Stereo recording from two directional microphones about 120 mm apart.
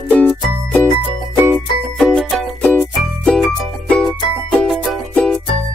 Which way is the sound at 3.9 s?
10° left (ahead or behind).